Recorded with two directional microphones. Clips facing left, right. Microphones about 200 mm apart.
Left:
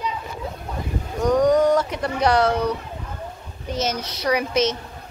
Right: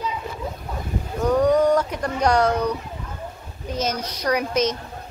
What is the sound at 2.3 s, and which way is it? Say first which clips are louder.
Speech: even; 10° right (ahead or behind).